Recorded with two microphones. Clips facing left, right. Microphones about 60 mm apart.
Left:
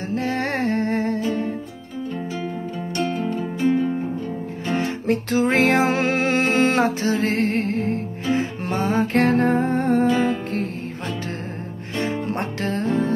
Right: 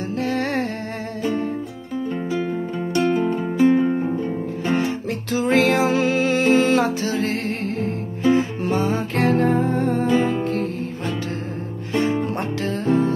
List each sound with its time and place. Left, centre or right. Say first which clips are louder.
0.3 s humming: left 1 dB; left
2.9 s music: right 5 dB; centre
5.0 s music: left 4 dB; left
5.4 s music: right 2 dB; left
7.2 s music: left 4 dB; left
8.6 s music: even; left
10.3 s music: right 3 dB; right